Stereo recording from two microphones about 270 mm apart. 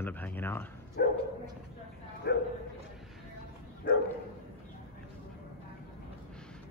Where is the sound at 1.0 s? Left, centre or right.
Left.